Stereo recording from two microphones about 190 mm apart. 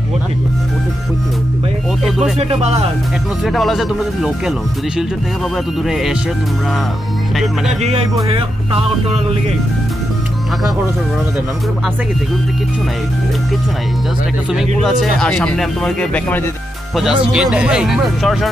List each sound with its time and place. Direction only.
2.0 s music: centre (ahead or behind)
2.3 s speech: 35° right (ahead or behind)
3.4 s speech: centre (ahead or behind)
7.8 s speech: 35° right (ahead or behind)
14.5 s speech: centre (ahead or behind)